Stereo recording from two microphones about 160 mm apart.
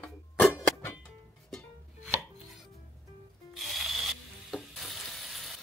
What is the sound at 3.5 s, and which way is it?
Ratchet, centre (ahead or behind).